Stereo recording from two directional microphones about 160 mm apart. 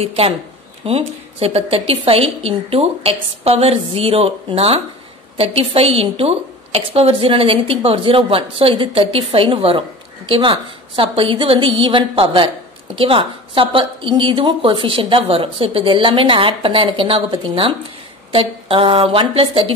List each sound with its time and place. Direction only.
0.0 s a woman's voice: 40° right (ahead or behind)